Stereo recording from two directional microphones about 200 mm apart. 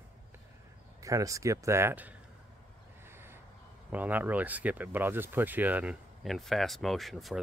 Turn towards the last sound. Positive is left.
turn(degrees=0)  # may be behind; listen again after turning